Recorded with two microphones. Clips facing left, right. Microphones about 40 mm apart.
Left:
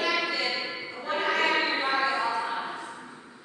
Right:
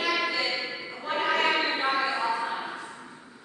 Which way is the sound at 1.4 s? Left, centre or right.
Centre.